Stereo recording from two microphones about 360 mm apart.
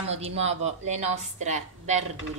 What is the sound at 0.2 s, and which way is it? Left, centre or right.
A woman's voice, centre.